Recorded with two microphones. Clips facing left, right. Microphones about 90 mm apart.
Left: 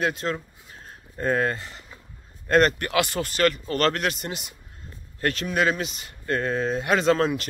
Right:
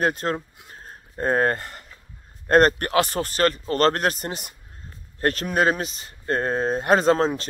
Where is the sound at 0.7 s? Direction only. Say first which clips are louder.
Right 2 dB; 40° right (ahead or behind).